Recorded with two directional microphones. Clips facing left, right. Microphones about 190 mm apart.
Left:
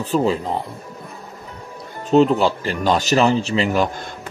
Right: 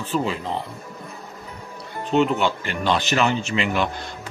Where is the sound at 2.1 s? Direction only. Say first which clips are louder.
Left 5 dB; 35° left (ahead or behind).